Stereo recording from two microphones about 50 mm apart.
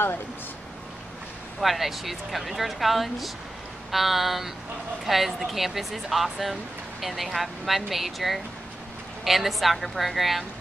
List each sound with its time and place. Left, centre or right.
1.6 s speech: centre